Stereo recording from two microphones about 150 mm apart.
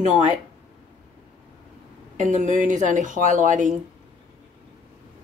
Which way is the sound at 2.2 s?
55° right (ahead or behind).